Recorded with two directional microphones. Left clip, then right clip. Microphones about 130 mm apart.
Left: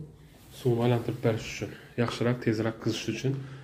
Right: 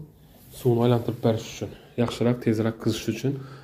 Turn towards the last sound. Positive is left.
turn(degrees=-45)  # may be behind; listen again after turning